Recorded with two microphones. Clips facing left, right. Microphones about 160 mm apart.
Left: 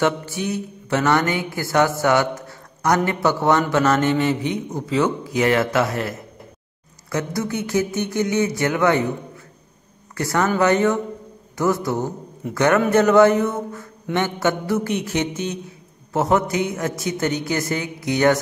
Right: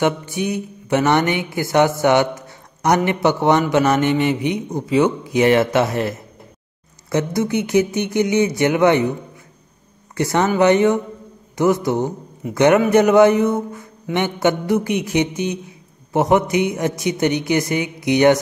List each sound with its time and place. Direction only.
0.0 s a man's voice: 15° right (ahead or behind)
10.1 s a man's voice: 20° right (ahead or behind)